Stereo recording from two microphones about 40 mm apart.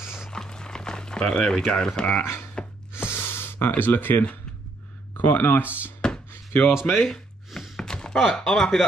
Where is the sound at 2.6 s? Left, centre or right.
Left.